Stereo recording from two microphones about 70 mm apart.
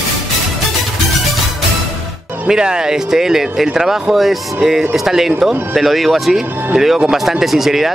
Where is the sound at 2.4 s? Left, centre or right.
Centre.